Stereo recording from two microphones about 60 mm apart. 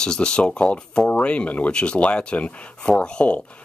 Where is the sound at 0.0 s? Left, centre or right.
Centre.